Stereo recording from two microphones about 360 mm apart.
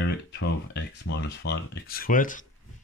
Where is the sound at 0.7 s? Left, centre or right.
Left.